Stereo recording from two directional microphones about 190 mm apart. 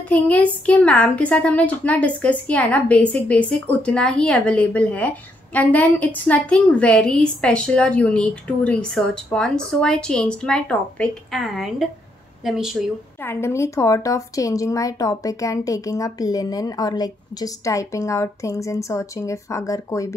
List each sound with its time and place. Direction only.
0.1 s a woman's voice: 5° left (ahead or behind)
13.2 s a woman's voice: 15° left (ahead or behind)